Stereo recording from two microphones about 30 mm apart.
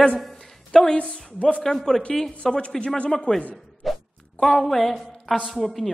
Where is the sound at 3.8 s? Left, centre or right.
Centre.